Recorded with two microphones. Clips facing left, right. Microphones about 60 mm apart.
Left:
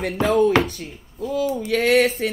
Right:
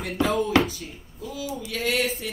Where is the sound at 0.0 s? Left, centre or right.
Left.